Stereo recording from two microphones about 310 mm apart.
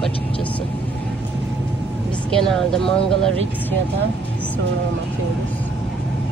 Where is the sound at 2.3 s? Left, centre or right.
Centre.